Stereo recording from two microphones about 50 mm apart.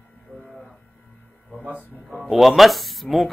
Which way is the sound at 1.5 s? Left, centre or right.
Right.